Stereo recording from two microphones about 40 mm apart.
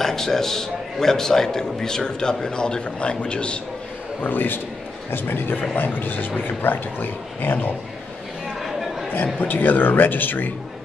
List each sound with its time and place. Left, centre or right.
0.0 s a man's voice: centre; by 3.6 s left
4.2 s speech: left
9.1 s speech: left